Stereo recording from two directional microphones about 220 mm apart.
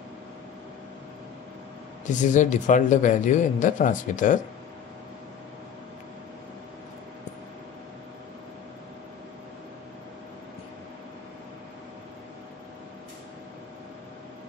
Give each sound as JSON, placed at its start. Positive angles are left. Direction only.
{"t": 2.0, "sound": "speech", "side_deg": 35}